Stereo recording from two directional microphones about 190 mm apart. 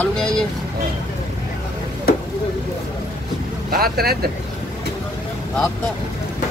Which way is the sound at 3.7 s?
55° right (ahead or behind).